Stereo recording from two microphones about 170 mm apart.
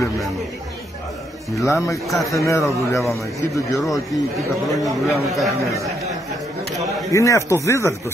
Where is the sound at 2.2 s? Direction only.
20° left (ahead or behind).